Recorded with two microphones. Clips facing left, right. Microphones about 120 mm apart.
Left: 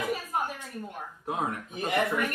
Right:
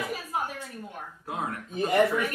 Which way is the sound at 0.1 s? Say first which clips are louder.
Left 1 dB; centre (ahead or behind).